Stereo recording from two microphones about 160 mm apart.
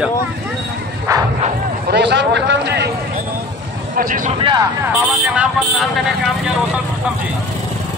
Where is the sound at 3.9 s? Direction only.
60° right (ahead or behind).